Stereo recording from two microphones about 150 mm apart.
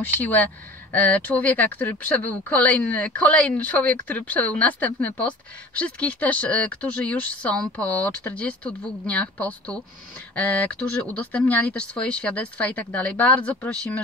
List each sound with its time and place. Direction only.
0.0 s speech: 10° left (ahead or behind)